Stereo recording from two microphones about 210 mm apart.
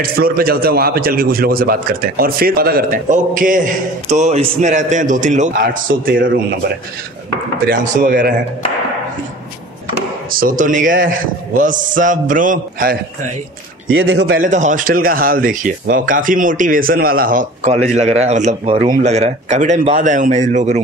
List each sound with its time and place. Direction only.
0.0 s a man's voice: 45° right (ahead or behind)
10.3 s speech: 40° right (ahead or behind)
13.8 s a man's voice: 65° right (ahead or behind)
14.4 s speech: 35° right (ahead or behind)